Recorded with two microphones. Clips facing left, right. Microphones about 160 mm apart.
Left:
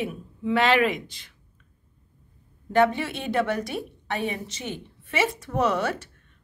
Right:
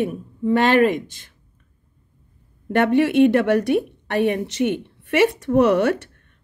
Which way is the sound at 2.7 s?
65° right (ahead or behind).